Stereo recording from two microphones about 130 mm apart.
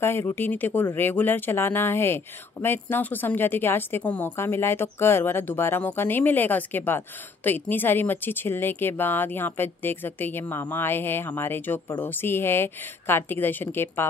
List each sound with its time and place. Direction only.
0.0 s speech: 20° left (ahead or behind)